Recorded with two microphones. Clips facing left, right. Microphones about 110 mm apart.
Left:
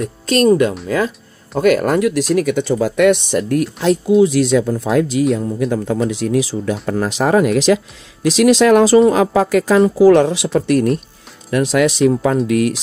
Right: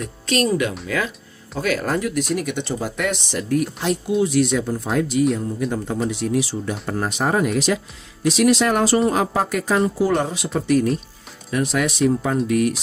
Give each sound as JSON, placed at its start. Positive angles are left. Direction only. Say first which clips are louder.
{"t": 0.3, "sound": "speech", "louder": "left 8 dB", "side_deg": 45}
{"t": 0.8, "sound": "a sound", "louder": "left 6 dB", "side_deg": 35}
{"t": 1.6, "sound": "speech", "louder": "left 9 dB", "side_deg": 55}
{"t": 4.3, "sound": "speech", "louder": "left 5 dB", "side_deg": 90}
{"t": 11.5, "sound": "speech", "louder": "left 7 dB", "side_deg": 90}